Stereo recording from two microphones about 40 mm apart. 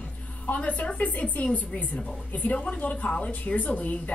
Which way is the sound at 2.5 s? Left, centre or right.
Left.